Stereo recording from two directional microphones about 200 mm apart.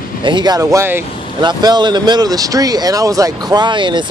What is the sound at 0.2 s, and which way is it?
Speech, 20° right (ahead or behind).